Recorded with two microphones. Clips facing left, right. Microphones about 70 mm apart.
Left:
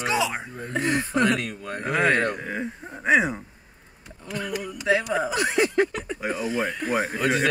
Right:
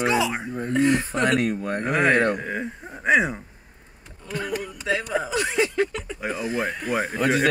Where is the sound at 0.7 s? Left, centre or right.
Left.